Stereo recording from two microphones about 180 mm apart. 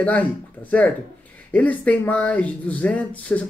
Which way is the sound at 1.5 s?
10° left (ahead or behind).